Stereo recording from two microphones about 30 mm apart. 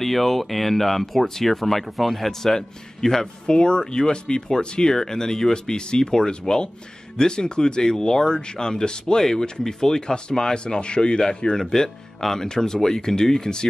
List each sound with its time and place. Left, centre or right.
0.0 s speech: centre
3.4 s speech: left
4.9 s speech: centre